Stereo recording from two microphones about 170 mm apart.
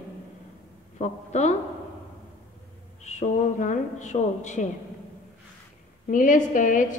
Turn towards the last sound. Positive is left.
turn(degrees=50)  # may be behind; listen again after turning